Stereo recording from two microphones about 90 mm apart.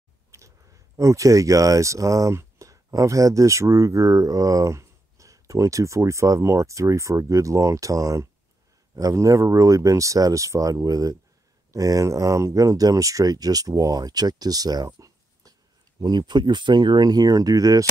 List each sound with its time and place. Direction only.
0.3 s a sound: 30° right (ahead or behind)
0.9 s speech: 35° right (ahead or behind)
16.0 s speech: 50° right (ahead or behind)